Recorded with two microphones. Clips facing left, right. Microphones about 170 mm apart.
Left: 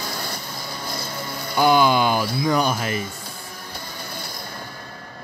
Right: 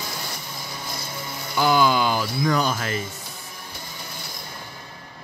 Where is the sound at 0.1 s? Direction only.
55° left (ahead or behind).